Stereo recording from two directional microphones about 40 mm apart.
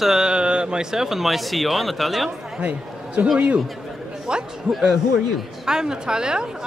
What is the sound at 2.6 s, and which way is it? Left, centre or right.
Speech, right.